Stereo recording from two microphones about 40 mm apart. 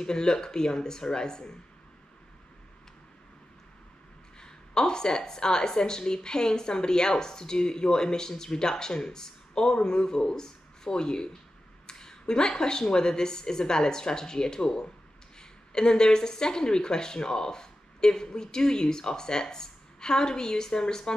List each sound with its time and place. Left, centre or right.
0.0 s a woman's voice: centre
4.4 s a woman's voice: centre